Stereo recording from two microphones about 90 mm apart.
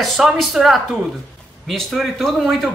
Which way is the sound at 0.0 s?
Centre (ahead or behind).